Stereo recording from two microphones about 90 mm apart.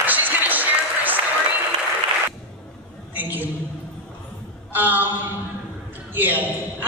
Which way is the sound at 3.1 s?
20° right (ahead or behind).